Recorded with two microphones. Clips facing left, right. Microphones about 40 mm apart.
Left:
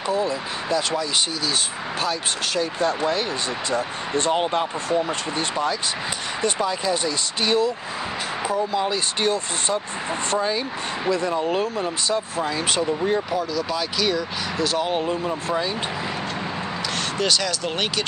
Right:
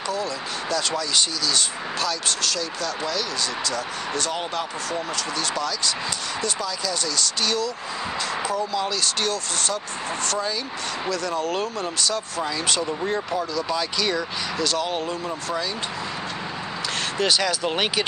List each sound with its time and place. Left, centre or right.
0.1 s speech: left
6.4 s speech: left
11.5 s speech: centre
12.0 s speech: left
12.6 s speech: centre
13.4 s speech: centre
17.2 s speech: centre